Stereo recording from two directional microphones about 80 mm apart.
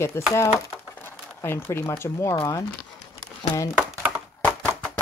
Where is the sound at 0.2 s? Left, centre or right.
Left.